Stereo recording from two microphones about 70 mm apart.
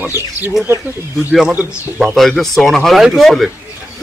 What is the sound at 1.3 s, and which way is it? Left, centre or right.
Speech, centre.